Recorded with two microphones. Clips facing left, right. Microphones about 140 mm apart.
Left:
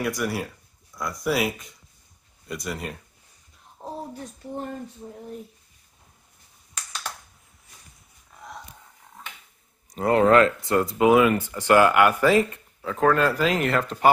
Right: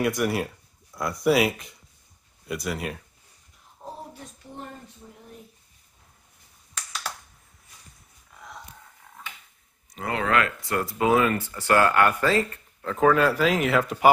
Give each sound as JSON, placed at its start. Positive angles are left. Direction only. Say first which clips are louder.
{"t": 0.0, "sound": "speech", "louder": "right 3 dB", "side_deg": -20}
{"t": 0.9, "sound": "speech", "louder": "right 4 dB", "side_deg": 0}
{"t": 3.8, "sound": "a sound", "louder": "left 3 dB", "side_deg": 30}
{"t": 5.0, "sound": "speech", "louder": "left 8 dB", "side_deg": 35}
{"t": 9.9, "sound": "speech", "louder": "left 8 dB", "side_deg": 40}
{"t": 12.8, "sound": "speech", "louder": "right 1 dB", "side_deg": 0}